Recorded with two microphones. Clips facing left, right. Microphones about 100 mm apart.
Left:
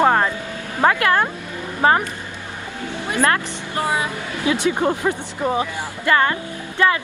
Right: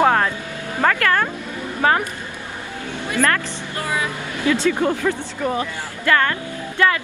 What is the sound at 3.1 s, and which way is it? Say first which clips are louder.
Speech: left 1 dB; 25° left (ahead or behind).